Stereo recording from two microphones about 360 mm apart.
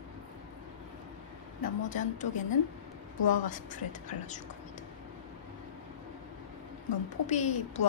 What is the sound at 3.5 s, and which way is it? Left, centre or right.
Speech, left.